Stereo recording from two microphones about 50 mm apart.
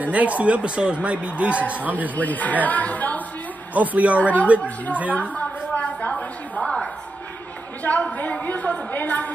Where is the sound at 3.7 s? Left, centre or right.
Right.